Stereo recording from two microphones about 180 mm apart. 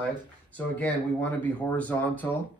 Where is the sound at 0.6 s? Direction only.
10° left (ahead or behind).